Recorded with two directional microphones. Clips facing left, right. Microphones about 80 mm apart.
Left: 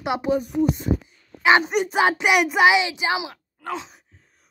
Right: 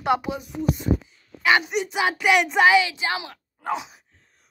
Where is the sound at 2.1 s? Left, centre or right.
Centre.